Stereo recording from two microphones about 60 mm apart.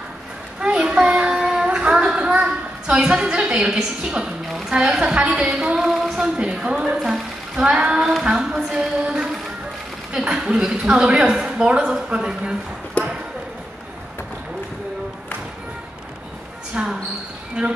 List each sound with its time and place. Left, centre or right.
0.6 s child singing: centre
3.5 s speech: centre
5.8 s a sound: centre
6.3 s speech: centre
16.7 s speech: right